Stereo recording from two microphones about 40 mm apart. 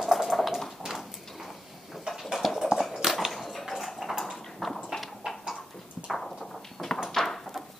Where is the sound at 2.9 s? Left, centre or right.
Centre.